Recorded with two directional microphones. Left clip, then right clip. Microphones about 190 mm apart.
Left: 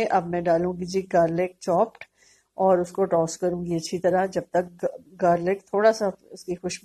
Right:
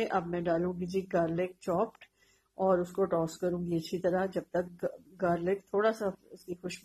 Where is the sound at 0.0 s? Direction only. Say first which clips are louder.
Left 9 dB; 25° left (ahead or behind).